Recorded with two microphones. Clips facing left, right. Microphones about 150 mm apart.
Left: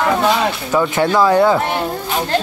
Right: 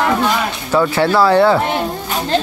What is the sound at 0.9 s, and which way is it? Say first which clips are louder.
Speech: right 1 dB; 20° left (ahead or behind).